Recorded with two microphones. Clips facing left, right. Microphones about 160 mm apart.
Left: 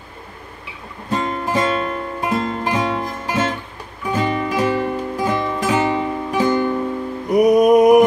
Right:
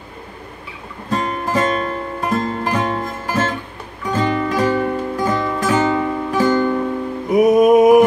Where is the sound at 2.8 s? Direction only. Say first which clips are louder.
Even; 45° right (ahead or behind).